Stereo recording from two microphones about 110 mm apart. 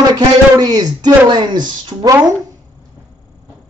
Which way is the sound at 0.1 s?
40° right (ahead or behind).